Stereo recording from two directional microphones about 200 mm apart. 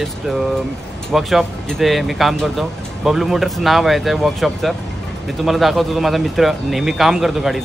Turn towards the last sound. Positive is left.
turn(degrees=0)  # may be behind; listen again after turning